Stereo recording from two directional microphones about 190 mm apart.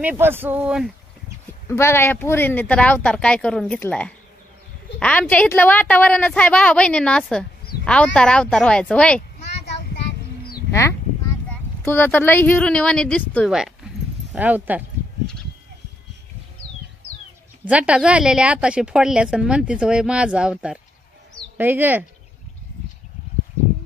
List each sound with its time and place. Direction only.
0.0 s speech: 10° right (ahead or behind)
1.7 s a woman's voice: 15° left (ahead or behind)
9.7 s child singing: 60° left (ahead or behind)
10.7 s a sound: 15° left (ahead or behind)
11.8 s a woman's voice: 10° left (ahead or behind); by 14.8 s 10° right (ahead or behind)
17.6 s a woman's voice: 5° right (ahead or behind)